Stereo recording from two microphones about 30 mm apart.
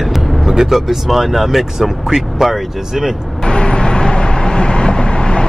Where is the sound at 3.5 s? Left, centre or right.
Left.